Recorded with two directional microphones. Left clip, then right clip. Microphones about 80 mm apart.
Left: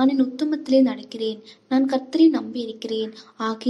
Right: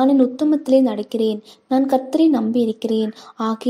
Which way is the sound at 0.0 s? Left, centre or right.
Right.